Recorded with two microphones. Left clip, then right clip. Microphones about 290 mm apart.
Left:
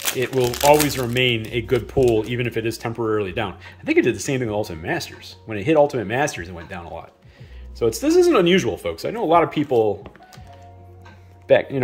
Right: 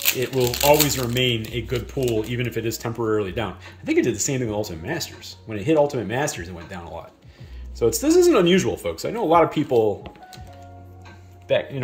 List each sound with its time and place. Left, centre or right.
0.0 s speech: centre
11.4 s speech: centre